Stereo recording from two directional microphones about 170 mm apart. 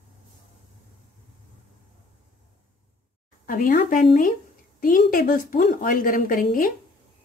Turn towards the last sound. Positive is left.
turn(degrees=55)  # may be behind; listen again after turning